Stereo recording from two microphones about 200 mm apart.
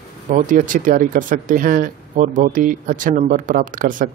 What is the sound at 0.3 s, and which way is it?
Speech, 40° right (ahead or behind).